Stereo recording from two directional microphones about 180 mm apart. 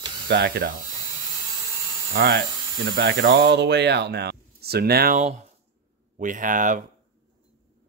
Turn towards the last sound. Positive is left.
turn(degrees=-45)  # may be behind; listen again after turning